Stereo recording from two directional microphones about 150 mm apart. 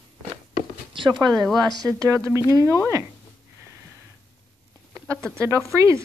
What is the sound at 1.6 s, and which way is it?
Speech, 25° right (ahead or behind).